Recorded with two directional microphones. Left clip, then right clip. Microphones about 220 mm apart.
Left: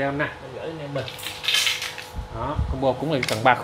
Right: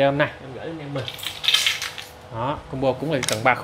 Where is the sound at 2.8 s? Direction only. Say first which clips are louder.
Even; 10° right (ahead or behind).